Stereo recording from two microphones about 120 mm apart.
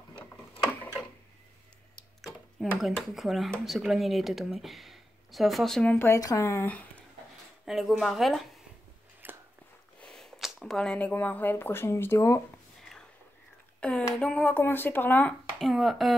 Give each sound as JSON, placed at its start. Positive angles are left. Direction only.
{"t": 2.0, "sound": "a sound", "side_deg": 0}
{"t": 3.6, "sound": "speech", "side_deg": 0}
{"t": 5.9, "sound": "speech", "side_deg": 25}
{"t": 7.6, "sound": "speech", "side_deg": -5}
{"t": 9.2, "sound": "a sound", "side_deg": -15}
{"t": 9.9, "sound": "speech", "side_deg": 5}
{"t": 13.7, "sound": "speech", "side_deg": 10}
{"t": 15.6, "sound": "speech", "side_deg": 0}